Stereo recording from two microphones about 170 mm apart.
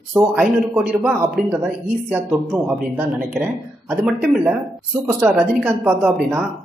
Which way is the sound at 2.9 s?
10° right (ahead or behind).